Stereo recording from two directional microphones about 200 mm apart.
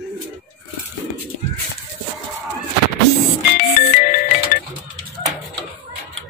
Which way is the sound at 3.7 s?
45° left (ahead or behind).